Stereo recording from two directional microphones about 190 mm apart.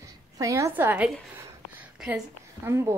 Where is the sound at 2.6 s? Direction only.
15° right (ahead or behind).